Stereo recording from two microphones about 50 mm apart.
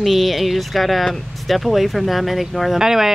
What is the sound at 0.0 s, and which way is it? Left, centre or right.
Speech, centre.